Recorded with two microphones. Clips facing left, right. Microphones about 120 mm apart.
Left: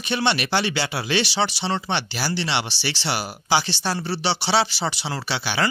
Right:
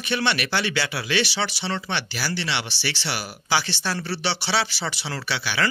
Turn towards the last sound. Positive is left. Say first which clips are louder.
# left 2 dB
turn(degrees=25)  # may be behind; listen again after turning